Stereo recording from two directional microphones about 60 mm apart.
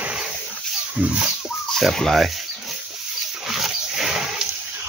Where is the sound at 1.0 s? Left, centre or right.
Right.